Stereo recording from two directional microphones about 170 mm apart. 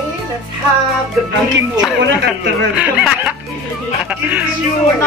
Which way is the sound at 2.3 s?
10° right (ahead or behind).